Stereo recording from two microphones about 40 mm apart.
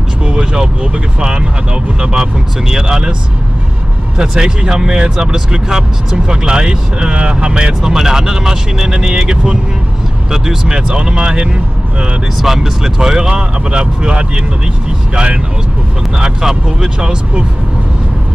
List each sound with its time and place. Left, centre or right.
0.3 s vehicle: right
1.2 s speech: right
4.2 s speech: centre
7.8 s speech: centre
12.4 s speech: centre
16.2 s speech: centre